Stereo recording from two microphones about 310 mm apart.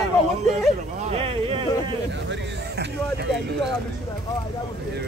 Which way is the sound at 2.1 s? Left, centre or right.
Right.